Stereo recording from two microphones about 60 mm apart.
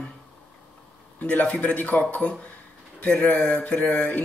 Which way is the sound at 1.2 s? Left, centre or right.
Left.